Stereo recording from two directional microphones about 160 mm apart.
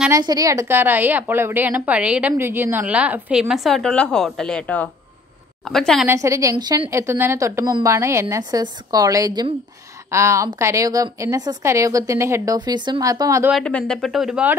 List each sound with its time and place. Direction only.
0.1 s a woman's voice: 20° right (ahead or behind); by 6.0 s centre (ahead or behind)
6.0 s a woman's voice: 20° right (ahead or behind)
13.5 s speech: 5° left (ahead or behind)